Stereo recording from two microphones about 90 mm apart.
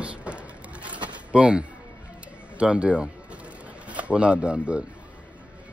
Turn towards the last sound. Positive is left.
turn(degrees=-15)  # may be behind; listen again after turning